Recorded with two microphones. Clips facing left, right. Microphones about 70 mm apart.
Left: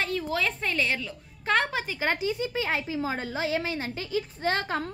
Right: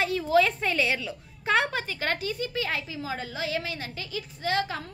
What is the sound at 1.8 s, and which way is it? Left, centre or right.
A woman's voice, centre.